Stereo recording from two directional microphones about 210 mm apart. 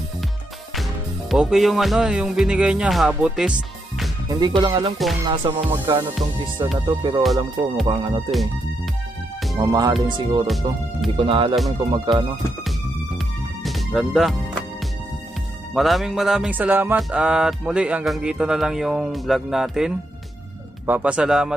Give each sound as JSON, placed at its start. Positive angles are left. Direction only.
{"t": 1.3, "sound": "music", "side_deg": 0}
{"t": 4.3, "sound": "speech", "side_deg": -20}
{"t": 5.7, "sound": "music", "side_deg": -10}
{"t": 7.0, "sound": "speech", "side_deg": -20}
{"t": 9.6, "sound": "music", "side_deg": -20}
{"t": 10.0, "sound": "speech", "side_deg": -20}
{"t": 10.4, "sound": "music", "side_deg": 0}
{"t": 11.1, "sound": "speech", "side_deg": -25}
{"t": 13.6, "sound": "music", "side_deg": 0}
{"t": 15.7, "sound": "music", "side_deg": 0}